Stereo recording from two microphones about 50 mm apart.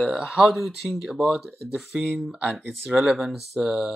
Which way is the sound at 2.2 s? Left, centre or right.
Centre.